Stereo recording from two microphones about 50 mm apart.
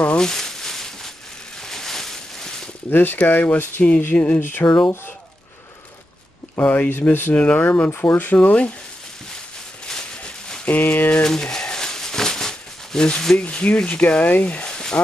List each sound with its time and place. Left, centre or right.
0.2 s a sound: centre
2.9 s speech: left
6.6 s speech: left
7.3 s speech: left
7.9 s speech: left
8.4 s speech: left
10.7 s speech: left
11.2 s a sound: centre
13.4 s speech: left